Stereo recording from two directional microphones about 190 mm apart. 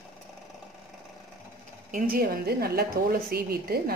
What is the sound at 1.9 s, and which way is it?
Speech, 50° right (ahead or behind).